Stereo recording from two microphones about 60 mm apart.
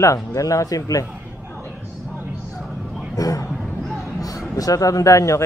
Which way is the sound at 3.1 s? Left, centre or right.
Left.